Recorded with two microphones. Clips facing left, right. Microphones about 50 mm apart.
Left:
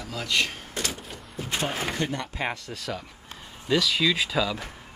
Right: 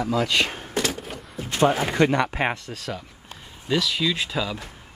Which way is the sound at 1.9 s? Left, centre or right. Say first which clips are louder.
Right 10 dB; right.